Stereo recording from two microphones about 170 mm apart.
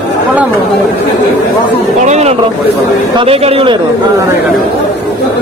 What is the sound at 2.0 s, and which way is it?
Speech, 40° right (ahead or behind).